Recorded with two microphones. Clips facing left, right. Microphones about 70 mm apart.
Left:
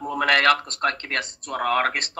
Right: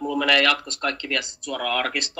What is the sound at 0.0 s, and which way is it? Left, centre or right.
Speech, left.